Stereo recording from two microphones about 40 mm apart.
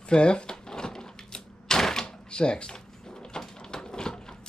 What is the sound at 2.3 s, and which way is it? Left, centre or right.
Drawer open or close, left.